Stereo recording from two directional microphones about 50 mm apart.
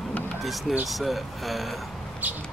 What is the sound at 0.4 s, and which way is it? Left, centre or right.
Speech, centre.